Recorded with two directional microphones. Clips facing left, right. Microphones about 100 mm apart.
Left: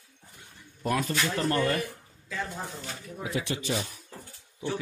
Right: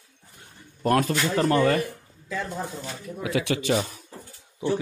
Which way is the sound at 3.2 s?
85° right.